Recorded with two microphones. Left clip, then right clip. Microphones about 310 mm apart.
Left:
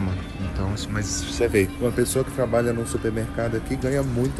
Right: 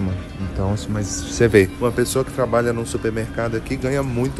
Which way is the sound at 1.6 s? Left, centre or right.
Centre.